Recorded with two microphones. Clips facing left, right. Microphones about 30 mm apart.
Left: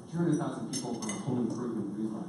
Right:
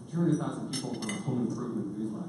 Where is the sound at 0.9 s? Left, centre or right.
Right.